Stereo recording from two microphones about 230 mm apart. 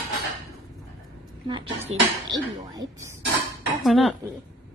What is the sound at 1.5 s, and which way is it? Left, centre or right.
A woman's voice, right.